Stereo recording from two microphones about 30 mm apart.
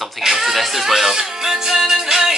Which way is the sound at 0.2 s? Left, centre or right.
Centre.